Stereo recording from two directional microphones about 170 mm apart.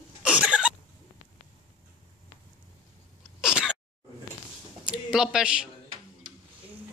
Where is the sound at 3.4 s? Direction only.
5° right (ahead or behind).